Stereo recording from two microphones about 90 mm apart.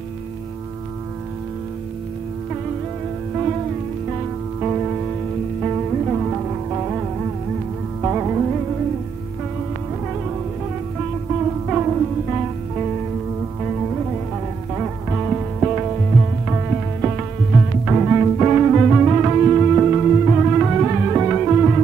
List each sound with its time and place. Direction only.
4.6 s music: 15° right (ahead or behind)
11.6 s music: 15° right (ahead or behind)